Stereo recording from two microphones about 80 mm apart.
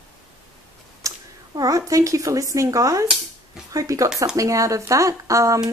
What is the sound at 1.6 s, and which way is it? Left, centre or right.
Speech, right.